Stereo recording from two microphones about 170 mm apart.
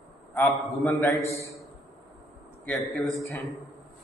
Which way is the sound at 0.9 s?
Centre (ahead or behind).